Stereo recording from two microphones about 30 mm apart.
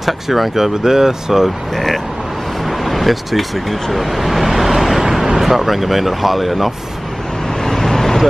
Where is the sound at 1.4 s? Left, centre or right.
Centre.